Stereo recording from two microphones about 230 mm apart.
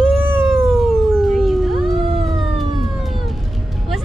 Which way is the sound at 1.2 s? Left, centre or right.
Centre.